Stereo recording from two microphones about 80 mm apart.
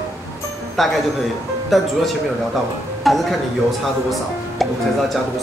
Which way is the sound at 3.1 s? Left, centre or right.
Centre.